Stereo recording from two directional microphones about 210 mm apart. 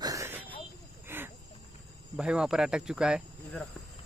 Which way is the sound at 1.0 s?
10° right (ahead or behind).